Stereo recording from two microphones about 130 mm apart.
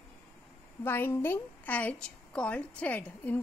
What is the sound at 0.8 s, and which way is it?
A woman's voice, 15° left (ahead or behind).